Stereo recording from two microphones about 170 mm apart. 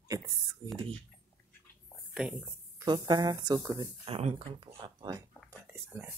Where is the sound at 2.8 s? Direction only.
25° right (ahead or behind).